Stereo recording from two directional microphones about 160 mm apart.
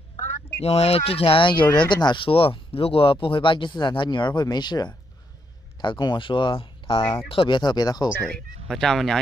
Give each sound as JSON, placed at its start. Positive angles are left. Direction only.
{"t": 0.6, "sound": "speech", "side_deg": 40}
{"t": 8.2, "sound": "speech", "side_deg": 5}